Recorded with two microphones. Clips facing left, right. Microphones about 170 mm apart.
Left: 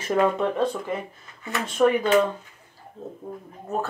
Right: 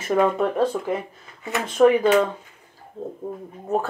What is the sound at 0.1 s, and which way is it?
Speech, 5° right (ahead or behind).